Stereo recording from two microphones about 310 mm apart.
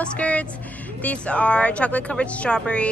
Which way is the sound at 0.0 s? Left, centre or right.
Centre.